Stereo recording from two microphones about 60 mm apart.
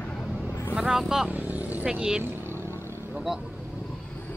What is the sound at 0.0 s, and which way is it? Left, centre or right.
Vehicle, centre.